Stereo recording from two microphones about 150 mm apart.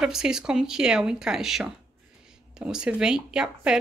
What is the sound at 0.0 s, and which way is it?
A woman's voice, 5° right (ahead or behind).